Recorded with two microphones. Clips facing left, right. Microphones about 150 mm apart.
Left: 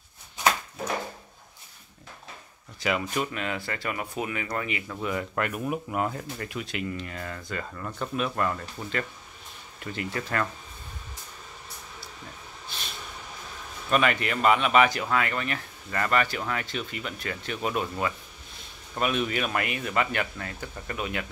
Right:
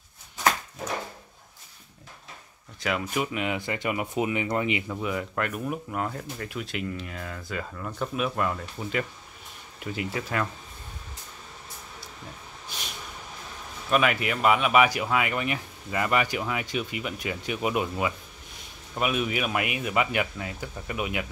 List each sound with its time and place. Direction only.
2.8 s speech: centre (ahead or behind)
3.3 s speech: 15° right (ahead or behind)
5.0 s speech: centre (ahead or behind)
13.8 s speech: 5° right (ahead or behind)